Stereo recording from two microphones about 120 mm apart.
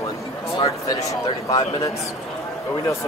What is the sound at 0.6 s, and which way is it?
Speech, 30° left (ahead or behind).